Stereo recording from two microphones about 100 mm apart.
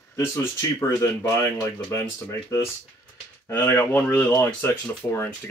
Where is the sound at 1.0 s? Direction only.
30° left (ahead or behind).